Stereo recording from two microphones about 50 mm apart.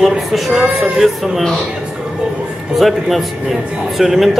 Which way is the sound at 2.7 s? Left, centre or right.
Centre.